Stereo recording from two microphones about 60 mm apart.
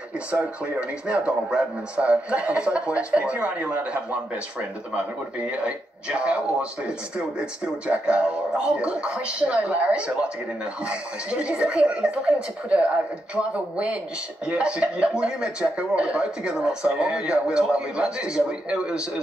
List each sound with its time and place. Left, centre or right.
0.3 s speech: centre